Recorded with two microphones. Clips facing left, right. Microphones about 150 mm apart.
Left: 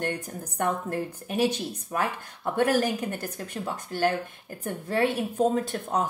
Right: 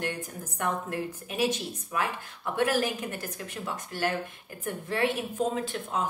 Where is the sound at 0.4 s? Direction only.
45° left (ahead or behind).